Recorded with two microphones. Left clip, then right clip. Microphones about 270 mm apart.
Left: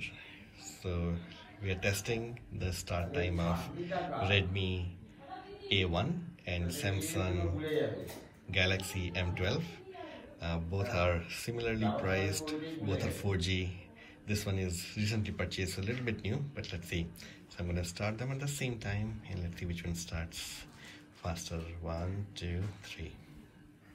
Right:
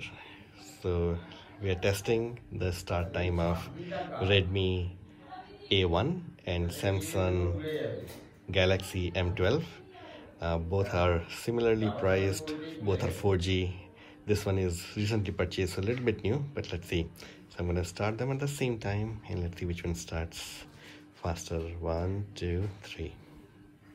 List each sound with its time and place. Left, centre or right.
0.8 s speech: centre
8.5 s a man's voice: centre